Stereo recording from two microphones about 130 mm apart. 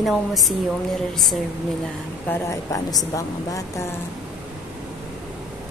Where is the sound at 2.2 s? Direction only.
20° left (ahead or behind).